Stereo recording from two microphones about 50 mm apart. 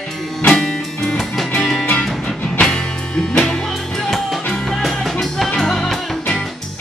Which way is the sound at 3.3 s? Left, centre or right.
Centre.